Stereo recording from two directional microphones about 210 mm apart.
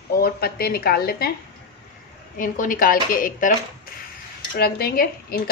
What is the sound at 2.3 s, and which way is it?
A woman's voice, 40° left (ahead or behind).